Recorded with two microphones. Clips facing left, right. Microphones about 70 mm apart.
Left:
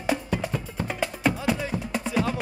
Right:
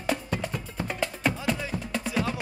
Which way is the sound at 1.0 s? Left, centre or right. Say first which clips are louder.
Left 3 dB; centre.